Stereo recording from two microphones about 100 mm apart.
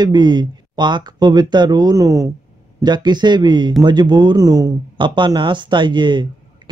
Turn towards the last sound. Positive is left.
turn(degrees=-50)  # may be behind; listen again after turning